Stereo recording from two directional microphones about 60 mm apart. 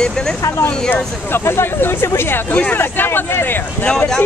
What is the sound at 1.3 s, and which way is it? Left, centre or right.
Speech, left.